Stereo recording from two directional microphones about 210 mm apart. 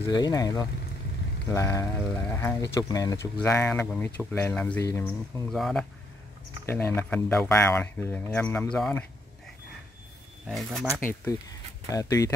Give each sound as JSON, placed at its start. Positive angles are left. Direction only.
{"t": 0.0, "sound": "speech", "side_deg": 15}
{"t": 10.4, "sound": "speech", "side_deg": 0}
{"t": 11.0, "sound": "speech", "side_deg": 15}